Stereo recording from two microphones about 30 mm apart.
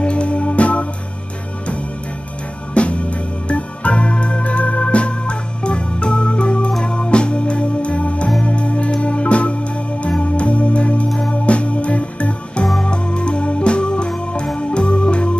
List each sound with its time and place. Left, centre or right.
0.0 s organ: left
2.7 s organ: left
6.8 s music: left
9.0 s organ: left
10.0 s music: left
10.4 s music: left
12.8 s music: left
14.7 s organ: left